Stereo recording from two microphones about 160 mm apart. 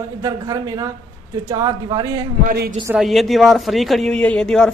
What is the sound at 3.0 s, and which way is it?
Speech, centre (ahead or behind).